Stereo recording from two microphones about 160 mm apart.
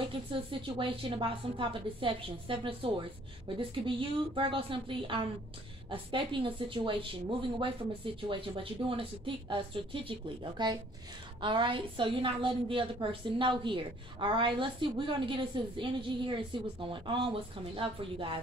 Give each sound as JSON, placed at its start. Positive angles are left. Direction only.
{"t": 0.3, "sound": "a woman's voice", "side_deg": -35}